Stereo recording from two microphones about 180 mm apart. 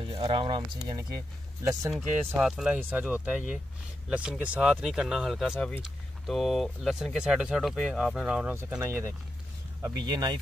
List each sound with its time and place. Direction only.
0.0 s speech: 30° right (ahead or behind)
2.3 s speech: 5° right (ahead or behind); by 10.4 s 25° right (ahead or behind)